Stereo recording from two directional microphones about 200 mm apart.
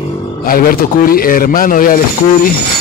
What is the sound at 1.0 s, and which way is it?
Speech, 45° left (ahead or behind).